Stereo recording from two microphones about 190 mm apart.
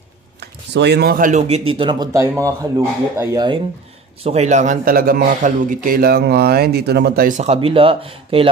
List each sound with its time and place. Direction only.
0.4 s speech: 60° right (ahead or behind); by 3.6 s 20° right (ahead or behind)
4.2 s a man's voice: 35° right (ahead or behind)